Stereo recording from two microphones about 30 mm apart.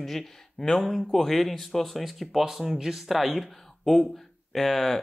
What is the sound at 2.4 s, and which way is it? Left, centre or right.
Speech, centre.